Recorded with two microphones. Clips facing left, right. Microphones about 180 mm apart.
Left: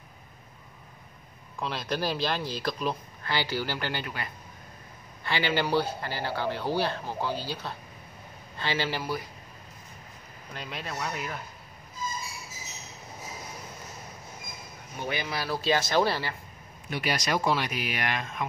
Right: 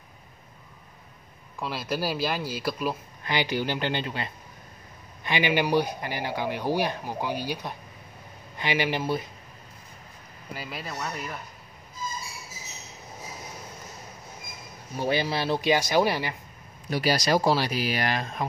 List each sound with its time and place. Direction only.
1.6 s speech: 5° right (ahead or behind); by 9.2 s 20° right (ahead or behind)
10.5 s speech: 5° right (ahead or behind)
15.0 s speech: 30° right (ahead or behind); by 16.3 s 15° right (ahead or behind)
16.9 s speech: 35° right (ahead or behind)